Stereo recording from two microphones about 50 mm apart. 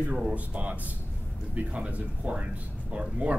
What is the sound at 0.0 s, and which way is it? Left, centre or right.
Speech, right.